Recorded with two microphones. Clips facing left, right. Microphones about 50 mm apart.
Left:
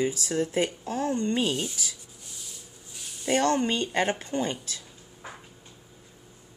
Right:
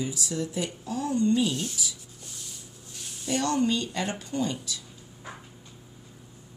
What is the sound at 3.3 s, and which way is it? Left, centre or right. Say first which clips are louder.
Speech: left 2 dB; left.